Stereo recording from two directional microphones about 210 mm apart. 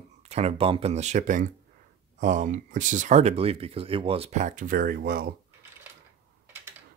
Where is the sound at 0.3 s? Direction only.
30° right (ahead or behind).